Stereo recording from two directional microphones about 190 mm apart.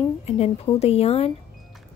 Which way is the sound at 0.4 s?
30° left (ahead or behind).